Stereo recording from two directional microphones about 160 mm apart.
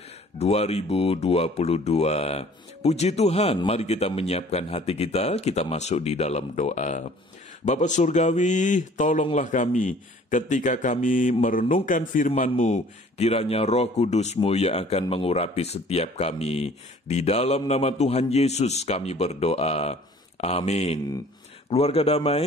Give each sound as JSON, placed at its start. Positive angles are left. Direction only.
{"t": 0.4, "sound": "a man's voice", "side_deg": 40}